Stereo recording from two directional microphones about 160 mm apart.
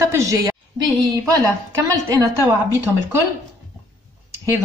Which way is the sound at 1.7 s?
20° right (ahead or behind).